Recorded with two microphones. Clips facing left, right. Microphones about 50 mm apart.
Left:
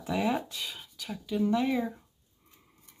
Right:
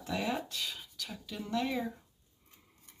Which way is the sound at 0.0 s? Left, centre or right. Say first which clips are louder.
Left 5 dB; centre.